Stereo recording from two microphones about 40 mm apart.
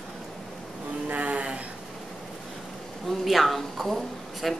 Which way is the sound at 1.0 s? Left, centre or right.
Right.